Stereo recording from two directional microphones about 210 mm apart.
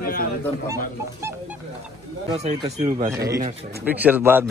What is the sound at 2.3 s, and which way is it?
Speech, 30° right (ahead or behind).